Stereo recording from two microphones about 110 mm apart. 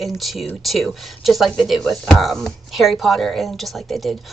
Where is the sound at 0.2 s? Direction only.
Centre (ahead or behind).